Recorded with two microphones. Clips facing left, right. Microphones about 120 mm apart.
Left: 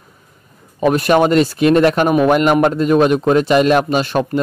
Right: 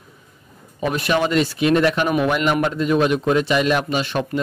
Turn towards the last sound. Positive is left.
turn(degrees=40)  # may be behind; listen again after turning